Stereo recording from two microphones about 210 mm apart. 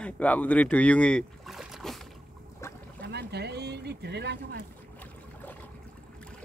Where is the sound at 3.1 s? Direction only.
50° right (ahead or behind).